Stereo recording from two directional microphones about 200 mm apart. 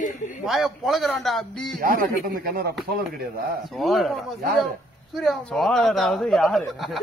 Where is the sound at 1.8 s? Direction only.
45° right (ahead or behind).